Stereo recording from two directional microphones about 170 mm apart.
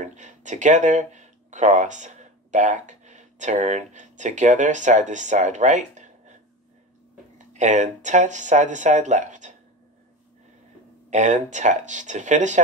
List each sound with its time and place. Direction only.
0.0 s speech: 45° right (ahead or behind)
7.3 s speech: 45° right (ahead or behind)
11.1 s speech: 45° right (ahead or behind)